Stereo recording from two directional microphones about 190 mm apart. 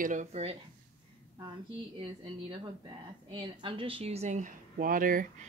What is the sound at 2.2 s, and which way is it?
A woman's voice, 25° right (ahead or behind).